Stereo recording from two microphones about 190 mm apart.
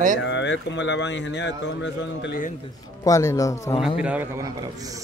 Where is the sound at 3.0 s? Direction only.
15° left (ahead or behind).